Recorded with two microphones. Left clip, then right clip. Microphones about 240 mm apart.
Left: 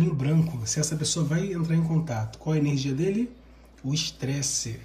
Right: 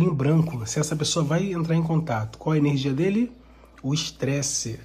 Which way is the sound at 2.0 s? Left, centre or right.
Centre.